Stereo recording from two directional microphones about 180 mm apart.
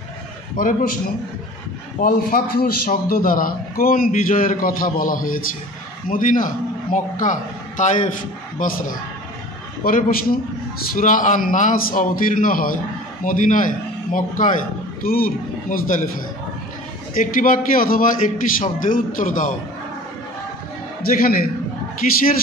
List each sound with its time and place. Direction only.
0.6 s a man's voice: 50° left (ahead or behind)
2.0 s a man's voice: 55° left (ahead or behind)
17.1 s a man's voice: 45° left (ahead or behind)
21.0 s a man's voice: 55° left (ahead or behind)